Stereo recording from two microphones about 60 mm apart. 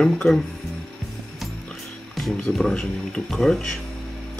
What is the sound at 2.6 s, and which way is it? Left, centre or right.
Speech, centre.